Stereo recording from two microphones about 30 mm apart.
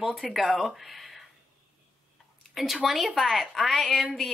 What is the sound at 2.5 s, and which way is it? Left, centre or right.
Speech, centre.